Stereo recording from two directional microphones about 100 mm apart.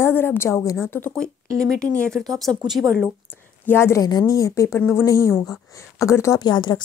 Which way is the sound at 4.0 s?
40° left (ahead or behind).